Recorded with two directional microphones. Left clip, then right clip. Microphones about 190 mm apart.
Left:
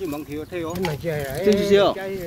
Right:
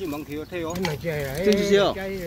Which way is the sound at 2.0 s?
60° left (ahead or behind).